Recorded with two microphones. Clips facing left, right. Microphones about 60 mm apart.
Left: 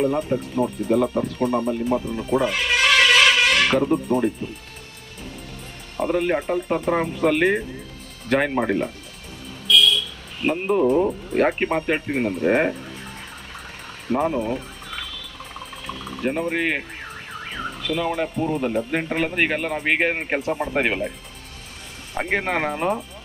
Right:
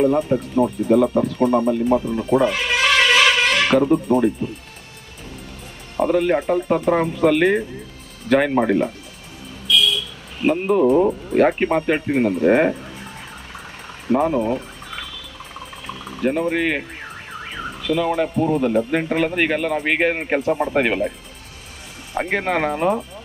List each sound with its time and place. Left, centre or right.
0.0 s speech: centre
5.9 s speech: centre
9.7 s buzzer: centre
11.2 s speech: centre
14.0 s fowl: centre
15.6 s a sound: centre
17.0 s car alarm: centre
18.7 s speech: centre
19.3 s speech: left
20.2 s speech: centre
20.7 s speech: centre
22.4 s speech: centre